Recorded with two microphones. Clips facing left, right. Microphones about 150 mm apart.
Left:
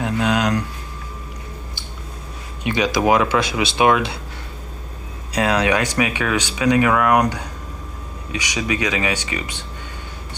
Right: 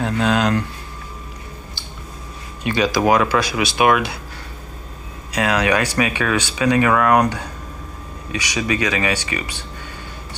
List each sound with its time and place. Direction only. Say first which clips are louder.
0.0 s speech: right 1 dB; 10° left (ahead or behind)
2.6 s speech: right 1 dB; 15° left (ahead or behind)
5.3 s speech: even; 30° left (ahead or behind)